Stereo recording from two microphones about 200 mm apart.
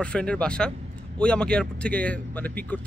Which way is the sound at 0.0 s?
5° left (ahead or behind).